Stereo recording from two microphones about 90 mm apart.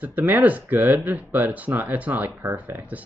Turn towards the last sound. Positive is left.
turn(degrees=-20)  # may be behind; listen again after turning